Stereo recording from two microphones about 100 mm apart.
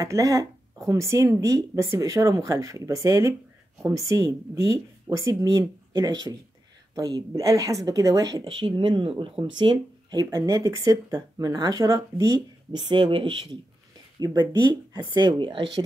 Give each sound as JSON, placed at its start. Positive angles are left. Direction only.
{"t": 0.0, "sound": "speech", "side_deg": -35}
{"t": 8.5, "sound": "speech", "side_deg": -50}
{"t": 10.3, "sound": "speech", "side_deg": -35}
{"t": 12.7, "sound": "speech", "side_deg": -50}